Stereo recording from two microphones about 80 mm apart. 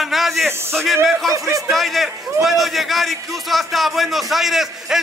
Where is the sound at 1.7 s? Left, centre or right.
Centre.